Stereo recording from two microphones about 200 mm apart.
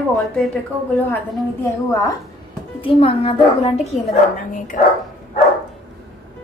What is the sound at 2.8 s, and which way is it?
Speech, 25° left (ahead or behind).